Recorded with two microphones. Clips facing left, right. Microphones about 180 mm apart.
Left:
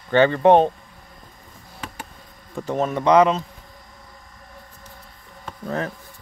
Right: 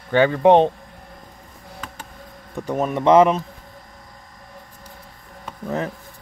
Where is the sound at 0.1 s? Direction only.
10° right (ahead or behind).